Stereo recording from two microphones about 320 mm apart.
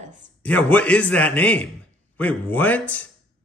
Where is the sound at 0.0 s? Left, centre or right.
Right.